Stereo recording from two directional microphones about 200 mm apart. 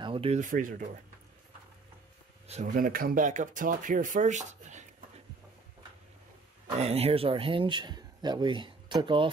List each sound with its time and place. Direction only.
0.0 s a sound: 25° right (ahead or behind)
0.4 s speech: 40° right (ahead or behind)
2.4 s speech: 35° right (ahead or behind)
6.8 s speech: 30° right (ahead or behind)